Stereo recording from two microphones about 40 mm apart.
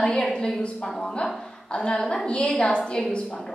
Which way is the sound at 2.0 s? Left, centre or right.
Centre.